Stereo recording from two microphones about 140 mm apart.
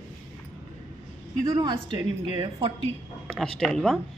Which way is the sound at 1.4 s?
30° right (ahead or behind).